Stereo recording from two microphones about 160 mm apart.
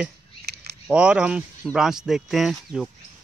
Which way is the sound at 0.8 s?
5° right (ahead or behind).